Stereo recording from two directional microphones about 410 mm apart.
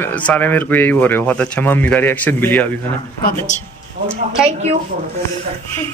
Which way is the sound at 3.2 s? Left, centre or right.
Centre.